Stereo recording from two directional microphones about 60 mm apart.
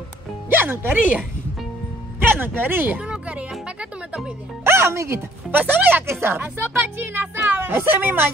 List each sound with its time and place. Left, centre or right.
0.5 s speech: right
2.2 s speech: right
3.0 s music: centre
4.6 s speech: right
5.5 s speech: right